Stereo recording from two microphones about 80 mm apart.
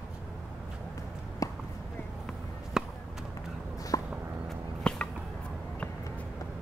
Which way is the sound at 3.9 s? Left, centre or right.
Left.